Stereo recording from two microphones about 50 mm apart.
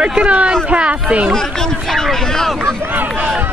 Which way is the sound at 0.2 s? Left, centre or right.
Right.